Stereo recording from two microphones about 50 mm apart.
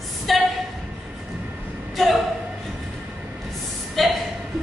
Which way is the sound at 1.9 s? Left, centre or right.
Centre.